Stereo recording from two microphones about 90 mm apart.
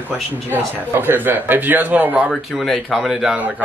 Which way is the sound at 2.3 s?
Centre (ahead or behind).